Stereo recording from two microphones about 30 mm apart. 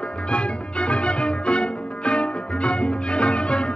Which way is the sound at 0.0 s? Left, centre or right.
Left.